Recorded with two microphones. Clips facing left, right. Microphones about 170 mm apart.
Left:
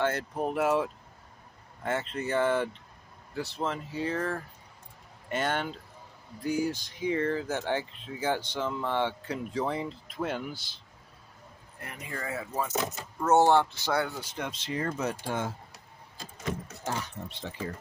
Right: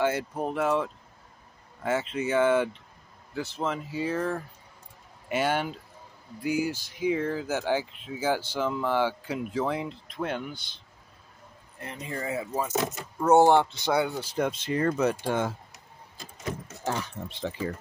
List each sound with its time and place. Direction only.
0.0 s speech: 5° right (ahead or behind)
0.5 s speech: 5° left (ahead or behind)
11.8 s speech: 25° right (ahead or behind)
14.3 s speech: 50° right (ahead or behind); by 15.5 s 75° right (ahead or behind)